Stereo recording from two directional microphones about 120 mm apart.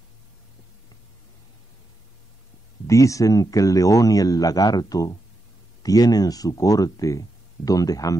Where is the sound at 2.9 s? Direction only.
25° left (ahead or behind).